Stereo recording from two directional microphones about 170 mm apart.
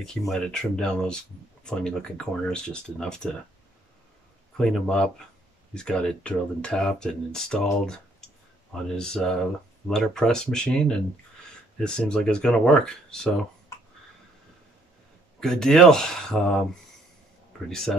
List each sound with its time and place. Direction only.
0.3 s speech: 5° left (ahead or behind)
4.6 s speech: 5° left (ahead or behind)
8.9 s speech: 5° left (ahead or behind)
15.4 s speech: 5° left (ahead or behind)